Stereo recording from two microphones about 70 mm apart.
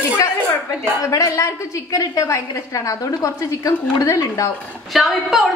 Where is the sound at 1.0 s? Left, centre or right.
Left.